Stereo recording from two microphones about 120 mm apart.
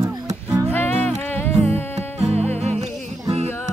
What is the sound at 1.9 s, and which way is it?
Music, 60° right (ahead or behind).